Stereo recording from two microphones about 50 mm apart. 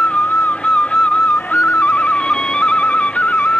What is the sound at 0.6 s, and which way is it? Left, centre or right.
Music, left.